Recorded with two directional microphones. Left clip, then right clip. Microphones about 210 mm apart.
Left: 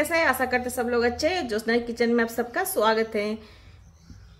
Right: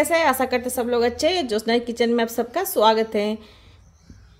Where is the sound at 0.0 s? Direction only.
30° right (ahead or behind).